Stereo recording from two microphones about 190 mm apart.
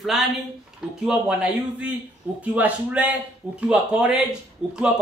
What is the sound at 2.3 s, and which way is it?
Speech, 5° right (ahead or behind).